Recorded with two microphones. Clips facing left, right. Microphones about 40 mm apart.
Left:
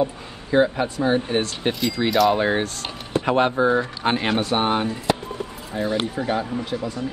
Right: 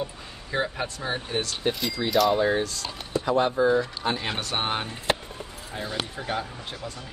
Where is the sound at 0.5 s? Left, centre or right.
Centre.